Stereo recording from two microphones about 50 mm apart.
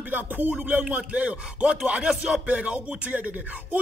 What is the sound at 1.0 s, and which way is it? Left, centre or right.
Speech, right.